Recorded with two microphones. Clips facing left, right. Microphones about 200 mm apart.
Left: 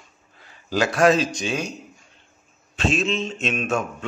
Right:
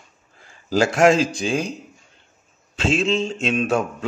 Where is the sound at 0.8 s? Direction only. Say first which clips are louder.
Right 2 dB; 25° right (ahead or behind).